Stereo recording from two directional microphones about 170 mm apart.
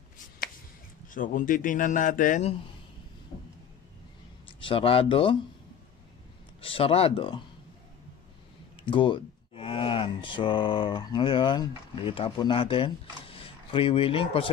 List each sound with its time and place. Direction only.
1.0 s speech: 50° left (ahead or behind)
4.5 s speech: 30° left (ahead or behind)
6.6 s speech: 35° left (ahead or behind)
8.8 s speech: 30° left (ahead or behind)